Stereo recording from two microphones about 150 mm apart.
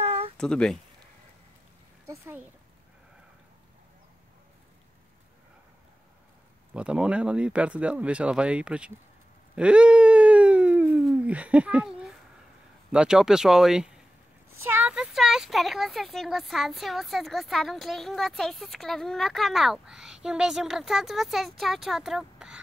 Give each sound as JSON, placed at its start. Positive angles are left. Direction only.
{"t": 0.0, "sound": "a sound", "side_deg": -40}
{"t": 0.4, "sound": "speech", "side_deg": 5}
{"t": 2.0, "sound": "speech", "side_deg": -15}
{"t": 6.7, "sound": "speech", "side_deg": -5}
{"t": 9.6, "sound": "a sound", "side_deg": -10}
{"t": 12.9, "sound": "speech", "side_deg": -5}